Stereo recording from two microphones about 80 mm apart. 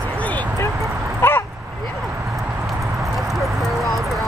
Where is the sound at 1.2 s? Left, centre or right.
Left.